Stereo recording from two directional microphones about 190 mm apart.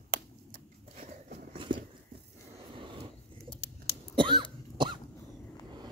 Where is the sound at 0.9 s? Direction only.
35° right (ahead or behind).